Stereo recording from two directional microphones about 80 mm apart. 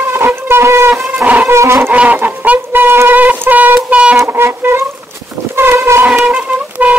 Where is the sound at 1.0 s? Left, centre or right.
Centre.